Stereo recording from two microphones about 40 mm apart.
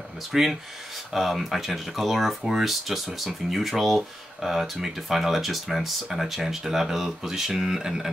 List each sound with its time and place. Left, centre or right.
0.3 s speech: centre